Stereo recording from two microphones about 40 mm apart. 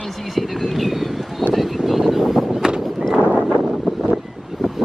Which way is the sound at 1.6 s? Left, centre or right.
Centre.